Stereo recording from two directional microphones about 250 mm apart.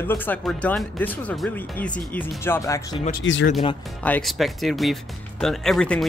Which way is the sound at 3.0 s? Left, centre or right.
Left.